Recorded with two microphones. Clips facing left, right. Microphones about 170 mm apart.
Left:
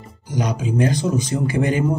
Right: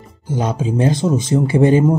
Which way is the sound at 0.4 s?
25° right (ahead or behind).